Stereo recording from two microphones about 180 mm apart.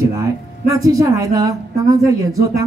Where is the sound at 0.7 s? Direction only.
20° right (ahead or behind).